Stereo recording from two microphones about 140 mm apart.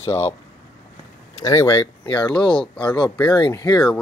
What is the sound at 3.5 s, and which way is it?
Speech, 25° left (ahead or behind).